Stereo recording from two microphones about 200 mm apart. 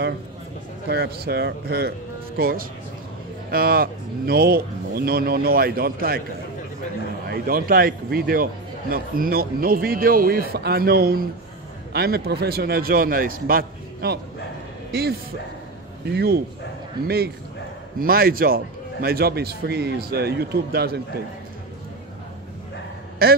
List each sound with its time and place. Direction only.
0.8 s a man's voice: 50° right (ahead or behind)
7.2 s a man's voice: 45° right (ahead or behind)
17.9 s a man's voice: 45° right (ahead or behind)
23.2 s a man's voice: 50° right (ahead or behind)